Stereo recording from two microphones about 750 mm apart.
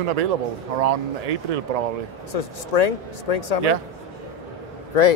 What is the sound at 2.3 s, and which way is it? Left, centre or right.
Speech, left.